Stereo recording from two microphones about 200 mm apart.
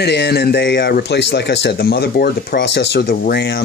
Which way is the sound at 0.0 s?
55° left (ahead or behind).